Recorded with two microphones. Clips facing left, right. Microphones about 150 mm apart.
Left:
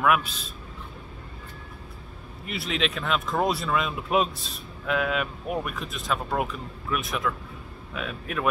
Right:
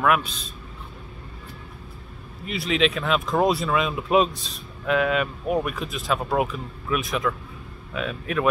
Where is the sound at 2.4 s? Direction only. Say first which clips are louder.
Right 6 dB; centre (ahead or behind).